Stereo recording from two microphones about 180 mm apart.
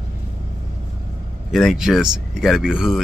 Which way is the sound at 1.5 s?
Centre (ahead or behind).